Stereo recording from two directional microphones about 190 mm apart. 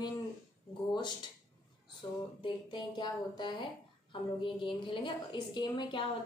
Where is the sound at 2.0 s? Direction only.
25° left (ahead or behind).